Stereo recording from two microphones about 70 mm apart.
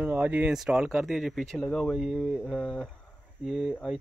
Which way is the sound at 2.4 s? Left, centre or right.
Centre.